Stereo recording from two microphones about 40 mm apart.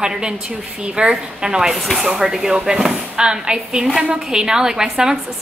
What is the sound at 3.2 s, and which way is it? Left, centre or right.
A woman's voice, right.